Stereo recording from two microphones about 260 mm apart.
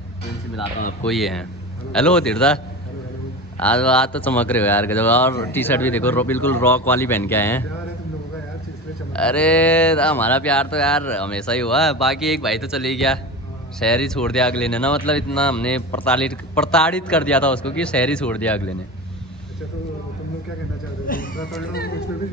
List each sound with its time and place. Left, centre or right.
1.0 s speech: centre
9.1 s speech: centre
21.1 s a sound: left